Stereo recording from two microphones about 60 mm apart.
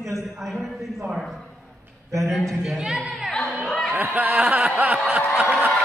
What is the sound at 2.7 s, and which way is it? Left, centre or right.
Speech, centre.